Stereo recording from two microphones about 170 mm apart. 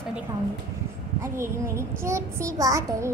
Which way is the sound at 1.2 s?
15° right (ahead or behind).